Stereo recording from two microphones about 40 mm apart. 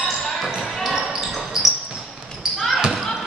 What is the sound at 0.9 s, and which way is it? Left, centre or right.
Basketball bounce, centre.